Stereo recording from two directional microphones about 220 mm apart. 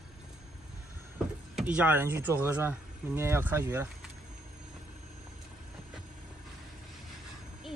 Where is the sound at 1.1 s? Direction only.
5° right (ahead or behind).